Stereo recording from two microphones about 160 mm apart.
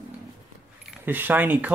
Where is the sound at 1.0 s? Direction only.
10° right (ahead or behind).